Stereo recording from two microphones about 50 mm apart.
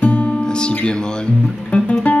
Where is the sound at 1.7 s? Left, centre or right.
Left.